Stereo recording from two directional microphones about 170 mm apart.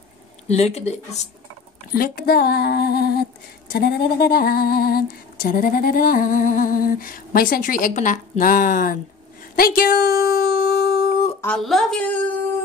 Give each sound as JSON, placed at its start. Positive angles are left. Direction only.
{"t": 0.5, "sound": "speech", "side_deg": 40}
{"t": 2.0, "sound": "a woman's voice", "side_deg": 60}
{"t": 11.4, "sound": "speech", "side_deg": 5}